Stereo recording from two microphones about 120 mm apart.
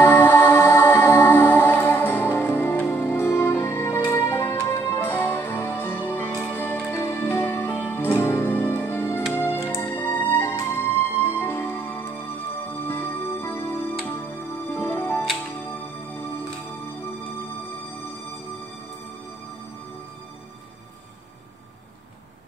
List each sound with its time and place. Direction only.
0.0 s music: 15° left (ahead or behind)